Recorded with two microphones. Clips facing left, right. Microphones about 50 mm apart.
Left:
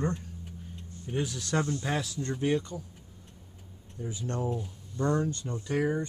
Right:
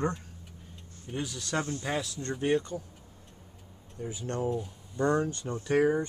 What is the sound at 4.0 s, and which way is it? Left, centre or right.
Speech, right.